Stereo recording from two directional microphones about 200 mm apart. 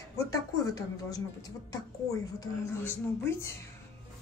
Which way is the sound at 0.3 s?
15° left (ahead or behind).